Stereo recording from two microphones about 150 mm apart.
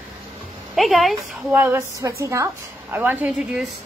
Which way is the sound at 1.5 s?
15° right (ahead or behind).